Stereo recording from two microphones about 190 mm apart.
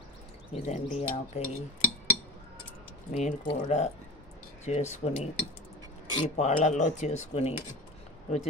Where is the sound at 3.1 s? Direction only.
40° left (ahead or behind).